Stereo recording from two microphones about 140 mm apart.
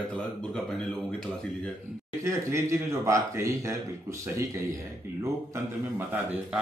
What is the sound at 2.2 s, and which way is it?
Speech, 20° right (ahead or behind).